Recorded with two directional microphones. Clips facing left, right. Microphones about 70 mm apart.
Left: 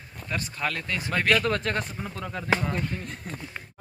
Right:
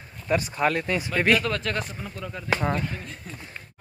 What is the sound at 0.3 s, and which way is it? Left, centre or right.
Speech, right.